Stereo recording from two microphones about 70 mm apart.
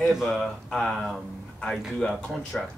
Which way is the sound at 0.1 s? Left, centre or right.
Centre.